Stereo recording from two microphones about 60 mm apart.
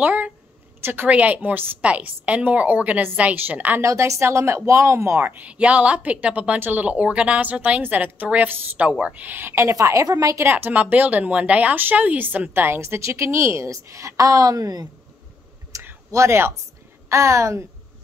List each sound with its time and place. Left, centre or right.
0.0 s a woman's voice: right
3.8 s speech: right
5.2 s speech: right
5.5 s a woman's voice: centre; by 10.4 s right
10.4 s a woman's voice: right
12.5 s a woman's voice: right
15.7 s clicking: right
16.1 s a woman's voice: right